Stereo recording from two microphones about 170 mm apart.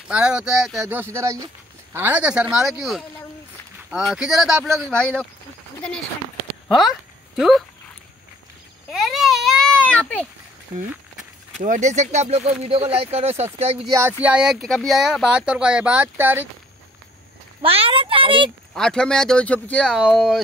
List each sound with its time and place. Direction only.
0.1 s speech: 5° right (ahead or behind)
6.7 s speech: centre (ahead or behind)
8.9 s baby cry: centre (ahead or behind)
11.6 s speech: 45° right (ahead or behind)
13.8 s speech: 15° right (ahead or behind)
14.2 s speech: 5° right (ahead or behind)
17.6 s speech: 35° right (ahead or behind)
18.8 s speech: 5° left (ahead or behind)